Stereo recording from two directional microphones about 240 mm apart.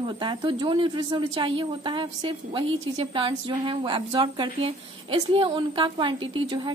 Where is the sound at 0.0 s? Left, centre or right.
Centre.